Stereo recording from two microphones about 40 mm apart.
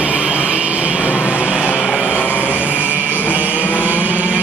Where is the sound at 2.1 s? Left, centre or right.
Left.